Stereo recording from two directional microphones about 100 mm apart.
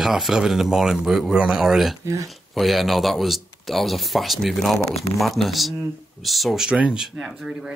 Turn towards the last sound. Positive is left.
turn(degrees=-5)  # may be behind; listen again after turning